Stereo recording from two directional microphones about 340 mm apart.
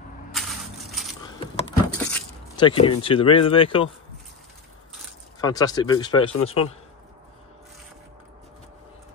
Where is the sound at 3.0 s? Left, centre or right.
Centre.